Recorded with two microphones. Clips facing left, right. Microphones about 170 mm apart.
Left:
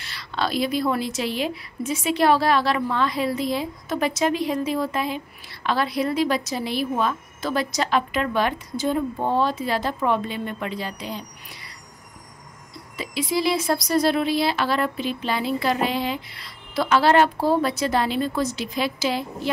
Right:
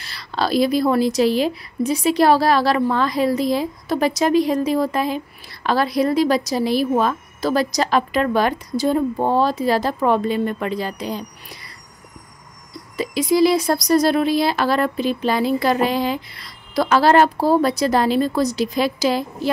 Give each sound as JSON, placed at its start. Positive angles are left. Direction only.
{"t": 0.0, "sound": "a woman's voice", "side_deg": -35}
{"t": 12.9, "sound": "a woman's voice", "side_deg": -40}